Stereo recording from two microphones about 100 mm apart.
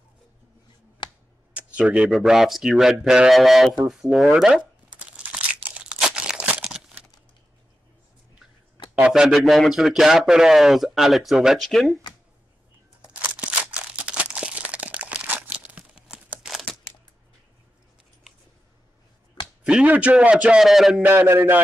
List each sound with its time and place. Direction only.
1.0 s a sound: 50° left (ahead or behind)
1.5 s a sound: 10° right (ahead or behind)
2.0 s speech: centre (ahead or behind)
4.9 s crunch: 15° right (ahead or behind)
8.9 s speech: 10° right (ahead or behind)
13.1 s crumpling: 10° right (ahead or behind)
19.6 s a man's voice: 10° right (ahead or behind)
21.0 s a man's voice: 20° right (ahead or behind)